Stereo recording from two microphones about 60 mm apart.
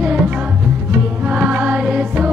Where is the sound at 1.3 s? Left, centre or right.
Right.